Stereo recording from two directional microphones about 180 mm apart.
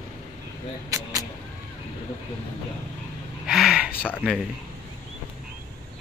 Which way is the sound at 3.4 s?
5° right (ahead or behind).